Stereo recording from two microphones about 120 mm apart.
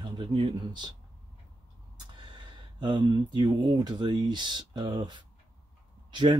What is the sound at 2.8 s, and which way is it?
Speech, 40° right (ahead or behind).